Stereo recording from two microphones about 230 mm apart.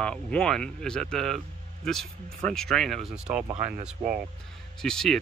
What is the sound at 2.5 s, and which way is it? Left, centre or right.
Speech, centre.